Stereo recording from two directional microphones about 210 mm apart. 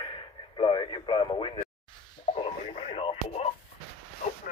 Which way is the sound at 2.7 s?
25° left (ahead or behind).